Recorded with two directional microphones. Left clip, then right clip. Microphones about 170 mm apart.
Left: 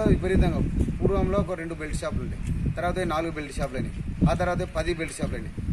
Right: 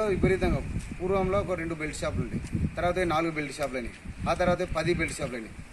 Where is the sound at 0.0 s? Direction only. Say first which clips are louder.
Left 1 dB; 5° left (ahead or behind).